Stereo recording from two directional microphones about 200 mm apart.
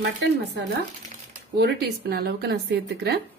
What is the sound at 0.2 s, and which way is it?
Speech, 65° right (ahead or behind).